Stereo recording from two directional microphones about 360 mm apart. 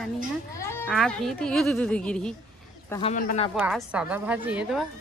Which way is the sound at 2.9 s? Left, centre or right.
Centre.